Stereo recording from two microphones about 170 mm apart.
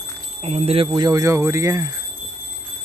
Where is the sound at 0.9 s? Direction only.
20° right (ahead or behind).